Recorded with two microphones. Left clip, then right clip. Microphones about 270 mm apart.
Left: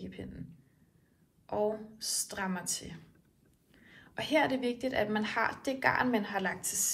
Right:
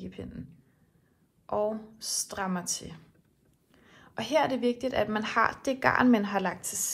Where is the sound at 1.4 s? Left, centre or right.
Centre.